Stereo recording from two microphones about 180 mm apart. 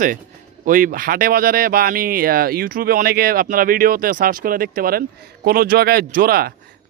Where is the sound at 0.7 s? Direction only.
50° right (ahead or behind).